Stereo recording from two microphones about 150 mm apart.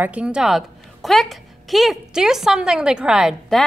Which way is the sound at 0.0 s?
10° right (ahead or behind).